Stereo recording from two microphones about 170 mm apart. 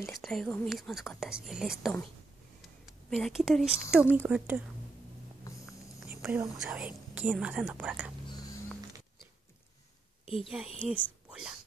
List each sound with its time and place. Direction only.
0.0 s speech: centre (ahead or behind)
3.1 s speech: centre (ahead or behind)
5.5 s cat: 20° left (ahead or behind)
6.0 s speech: 10° right (ahead or behind)
10.4 s speech: 5° right (ahead or behind)